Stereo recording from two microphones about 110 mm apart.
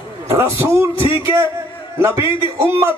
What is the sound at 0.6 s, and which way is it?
Speech, 25° right (ahead or behind).